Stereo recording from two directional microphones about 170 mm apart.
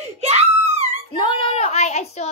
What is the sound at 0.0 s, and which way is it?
Screaming, 40° right (ahead or behind).